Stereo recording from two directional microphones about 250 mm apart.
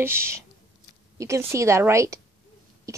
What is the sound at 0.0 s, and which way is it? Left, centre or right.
A woman's voice, centre.